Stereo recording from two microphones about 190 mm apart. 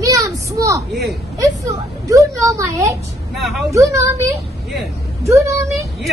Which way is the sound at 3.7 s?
15° right (ahead or behind).